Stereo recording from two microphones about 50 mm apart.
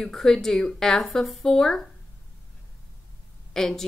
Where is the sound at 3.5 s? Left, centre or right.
Centre.